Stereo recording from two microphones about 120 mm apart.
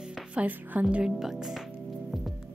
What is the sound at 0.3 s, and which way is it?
Speech, 10° right (ahead or behind).